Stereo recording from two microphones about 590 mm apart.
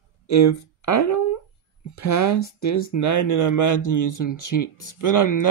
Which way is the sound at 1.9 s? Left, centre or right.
Left.